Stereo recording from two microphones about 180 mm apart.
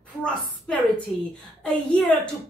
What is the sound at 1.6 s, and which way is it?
Speech, 5° left (ahead or behind).